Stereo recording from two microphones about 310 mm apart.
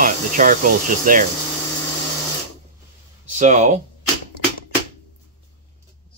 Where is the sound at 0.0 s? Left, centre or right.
Right.